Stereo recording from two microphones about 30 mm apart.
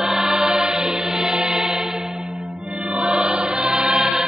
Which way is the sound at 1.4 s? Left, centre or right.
Centre.